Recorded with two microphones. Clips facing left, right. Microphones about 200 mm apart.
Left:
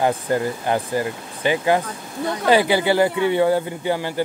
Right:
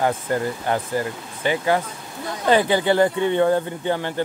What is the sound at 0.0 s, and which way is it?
Speech, 15° left (ahead or behind).